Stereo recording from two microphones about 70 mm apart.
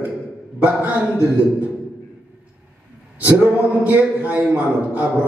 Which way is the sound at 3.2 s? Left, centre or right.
Right.